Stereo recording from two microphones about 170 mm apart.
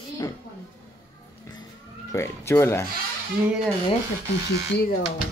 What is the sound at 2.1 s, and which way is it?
Speech, 15° left (ahead or behind).